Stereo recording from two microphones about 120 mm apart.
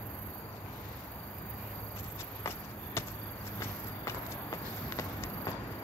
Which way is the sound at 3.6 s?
25° left (ahead or behind).